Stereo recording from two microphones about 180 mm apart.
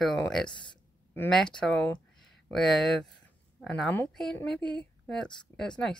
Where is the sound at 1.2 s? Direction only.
5° left (ahead or behind).